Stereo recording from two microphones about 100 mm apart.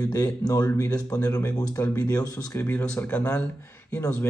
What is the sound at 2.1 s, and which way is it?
Speech, 40° left (ahead or behind).